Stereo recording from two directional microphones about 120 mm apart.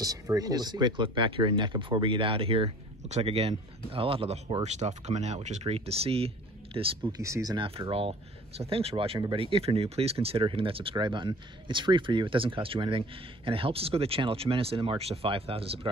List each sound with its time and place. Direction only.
0.0 s speech: 30° right (ahead or behind); by 4.6 s 50° right (ahead or behind)
4.6 s speech: 70° right (ahead or behind); by 7.1 s 50° right (ahead or behind)
7.1 s speech: 25° right (ahead or behind)
7.5 s speech: 50° right (ahead or behind)